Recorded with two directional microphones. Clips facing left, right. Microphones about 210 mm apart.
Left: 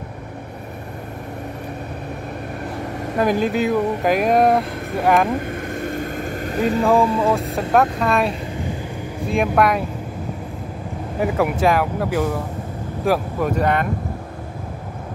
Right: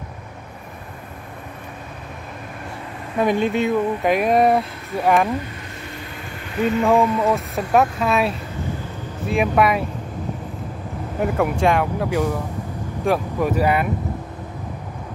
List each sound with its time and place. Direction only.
3.2 s speech: centre (ahead or behind)
5.3 s vehicle: 50° left (ahead or behind)
7.0 s music: 30° left (ahead or behind)
7.7 s speech: 5° right (ahead or behind)
11.1 s speech: 5° left (ahead or behind)